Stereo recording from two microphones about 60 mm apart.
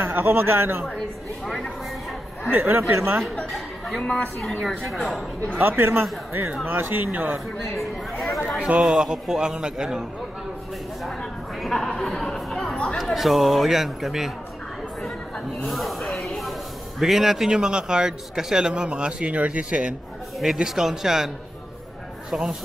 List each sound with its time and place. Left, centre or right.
0.0 s a man's voice: right
0.8 s speech: centre
2.5 s a man's voice: right
2.9 s speech: right
4.0 s a woman's voice: centre
4.6 s speech: centre
5.6 s a man's voice: right
7.5 s speech: centre
8.5 s a man's voice: centre
11.6 s a woman's voice: centre
15.6 s snake: centre
17.0 s speech: centre
20.6 s speech: centre
22.3 s speech: centre